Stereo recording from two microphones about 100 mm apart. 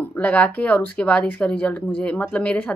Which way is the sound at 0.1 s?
15° left (ahead or behind).